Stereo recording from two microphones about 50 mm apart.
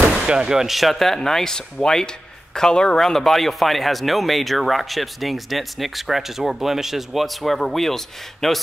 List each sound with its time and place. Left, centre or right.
0.1 s speech: centre